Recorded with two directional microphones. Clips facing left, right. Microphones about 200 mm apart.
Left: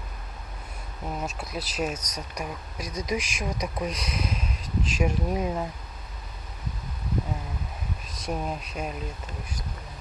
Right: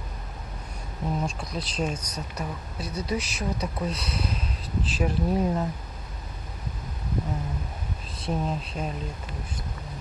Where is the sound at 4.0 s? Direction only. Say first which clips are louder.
Even; 30° right (ahead or behind).